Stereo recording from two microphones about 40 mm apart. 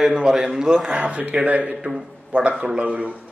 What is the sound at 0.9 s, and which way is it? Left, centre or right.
A man's voice, right.